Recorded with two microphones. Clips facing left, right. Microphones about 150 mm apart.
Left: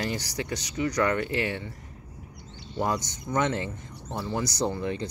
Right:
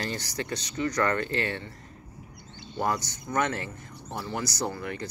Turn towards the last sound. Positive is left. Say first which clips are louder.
# left 4 dB
turn(degrees=20)  # may be behind; listen again after turning